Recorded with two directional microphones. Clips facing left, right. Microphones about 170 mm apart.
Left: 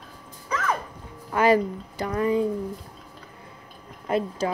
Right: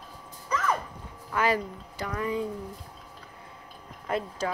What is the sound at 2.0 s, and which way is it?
Speech, 35° left (ahead or behind).